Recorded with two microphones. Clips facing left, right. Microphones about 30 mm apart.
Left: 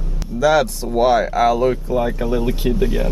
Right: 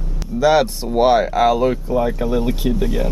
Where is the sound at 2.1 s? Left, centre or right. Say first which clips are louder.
Right 1 dB; centre.